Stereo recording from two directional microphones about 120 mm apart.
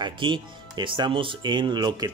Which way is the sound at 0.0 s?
40° right (ahead or behind).